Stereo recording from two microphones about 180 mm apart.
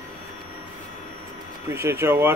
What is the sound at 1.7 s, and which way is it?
Speech, 15° right (ahead or behind).